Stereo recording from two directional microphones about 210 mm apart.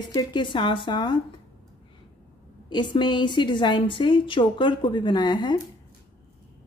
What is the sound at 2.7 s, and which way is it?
A woman's voice, 20° left (ahead or behind).